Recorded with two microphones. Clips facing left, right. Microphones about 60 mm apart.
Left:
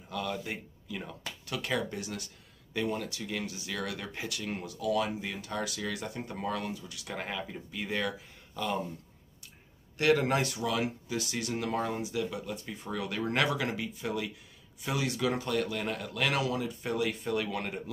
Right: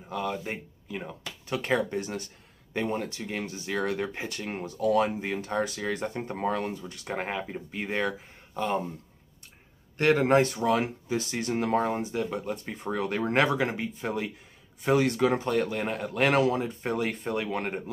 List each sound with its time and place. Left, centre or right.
0.1 s speech: right
9.9 s speech: right